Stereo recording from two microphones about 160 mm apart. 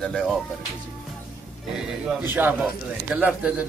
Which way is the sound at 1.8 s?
10° right (ahead or behind).